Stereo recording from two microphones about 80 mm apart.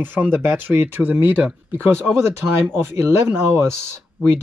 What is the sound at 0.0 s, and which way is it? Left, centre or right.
Speech, right.